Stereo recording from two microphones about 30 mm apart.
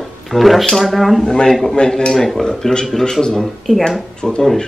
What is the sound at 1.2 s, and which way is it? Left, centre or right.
Speech, left.